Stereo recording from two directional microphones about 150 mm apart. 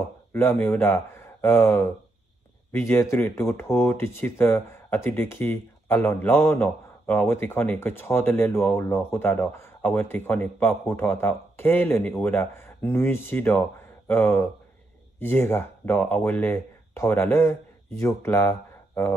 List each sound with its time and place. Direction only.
0.3 s speech: 15° left (ahead or behind)